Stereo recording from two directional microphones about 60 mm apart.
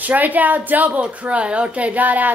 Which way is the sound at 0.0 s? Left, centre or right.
Right.